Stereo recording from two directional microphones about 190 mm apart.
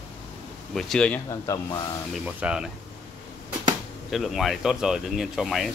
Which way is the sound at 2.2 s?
5° right (ahead or behind).